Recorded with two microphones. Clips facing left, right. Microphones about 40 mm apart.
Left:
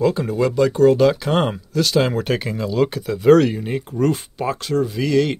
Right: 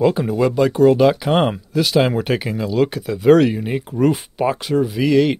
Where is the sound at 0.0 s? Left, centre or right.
Centre.